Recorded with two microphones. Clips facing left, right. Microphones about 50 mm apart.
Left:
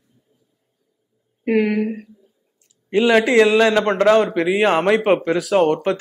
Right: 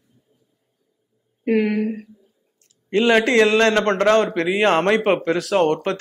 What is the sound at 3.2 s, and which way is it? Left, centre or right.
A man's voice, centre.